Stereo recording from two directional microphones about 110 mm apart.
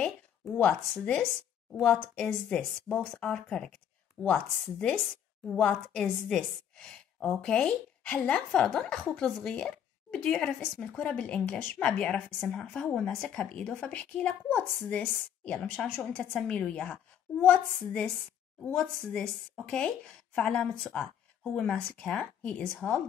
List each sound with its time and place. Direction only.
0.0 s a woman's voice: 10° left (ahead or behind)